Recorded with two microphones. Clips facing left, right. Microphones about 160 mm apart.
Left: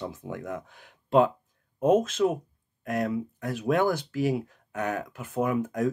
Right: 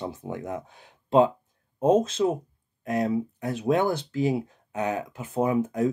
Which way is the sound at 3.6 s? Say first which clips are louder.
Right 1 dB; 25° right (ahead or behind).